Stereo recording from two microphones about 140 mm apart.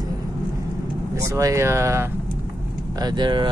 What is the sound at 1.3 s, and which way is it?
Speech, 20° right (ahead or behind).